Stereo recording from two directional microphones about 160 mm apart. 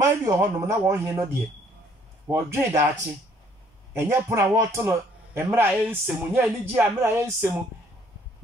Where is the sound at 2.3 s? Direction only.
15° right (ahead or behind).